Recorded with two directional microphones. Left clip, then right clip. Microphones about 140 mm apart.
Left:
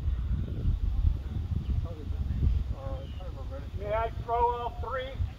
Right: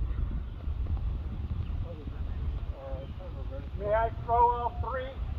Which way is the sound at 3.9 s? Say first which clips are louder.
Right 3 dB; 30° left (ahead or behind).